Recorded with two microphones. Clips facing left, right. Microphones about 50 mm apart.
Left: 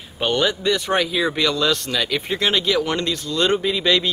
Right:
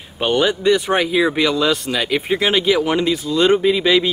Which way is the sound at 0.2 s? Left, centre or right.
Centre.